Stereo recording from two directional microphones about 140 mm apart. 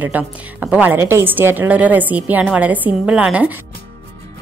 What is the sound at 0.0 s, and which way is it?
A woman's voice, 10° right (ahead or behind).